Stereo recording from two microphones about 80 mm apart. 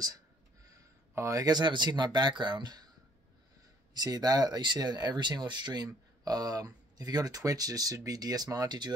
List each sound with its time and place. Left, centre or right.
0.7 s speech: right
3.9 s speech: right
8.6 s speech: right